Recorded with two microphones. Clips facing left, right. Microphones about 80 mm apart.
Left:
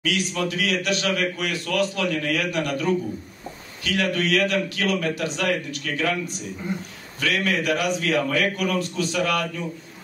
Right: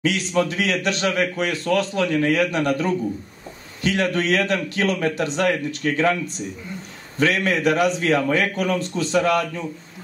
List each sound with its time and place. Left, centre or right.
0.0 s a man's voice: right